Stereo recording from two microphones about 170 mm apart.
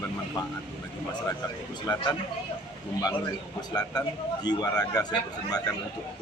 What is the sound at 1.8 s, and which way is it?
Speech, 15° left (ahead or behind).